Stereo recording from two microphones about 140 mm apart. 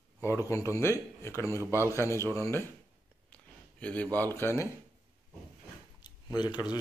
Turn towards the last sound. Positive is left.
turn(degrees=30)  # may be behind; listen again after turning